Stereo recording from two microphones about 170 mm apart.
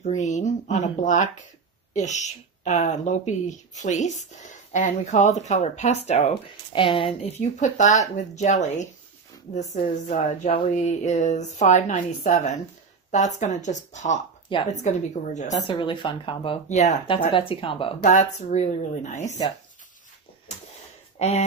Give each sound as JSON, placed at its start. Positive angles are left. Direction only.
{"t": 0.0, "sound": "speech", "side_deg": 45}
{"t": 6.7, "sound": "speech", "side_deg": 30}
{"t": 7.5, "sound": "speech", "side_deg": 45}
{"t": 15.5, "sound": "speech", "side_deg": 25}
{"t": 16.6, "sound": "speech", "side_deg": 45}
{"t": 17.3, "sound": "speech", "side_deg": 30}
{"t": 18.0, "sound": "speech", "side_deg": 45}
{"t": 21.2, "sound": "speech", "side_deg": 40}